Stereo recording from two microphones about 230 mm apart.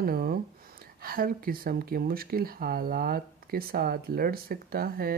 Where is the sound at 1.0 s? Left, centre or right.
Right.